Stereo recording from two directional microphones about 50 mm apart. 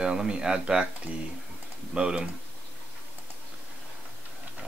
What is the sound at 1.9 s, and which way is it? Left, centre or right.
Speech, centre.